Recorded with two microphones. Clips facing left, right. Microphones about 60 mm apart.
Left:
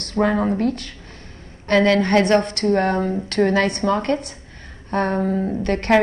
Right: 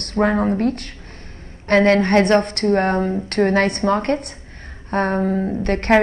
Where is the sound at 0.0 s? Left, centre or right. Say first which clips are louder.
Right 1 dB; right.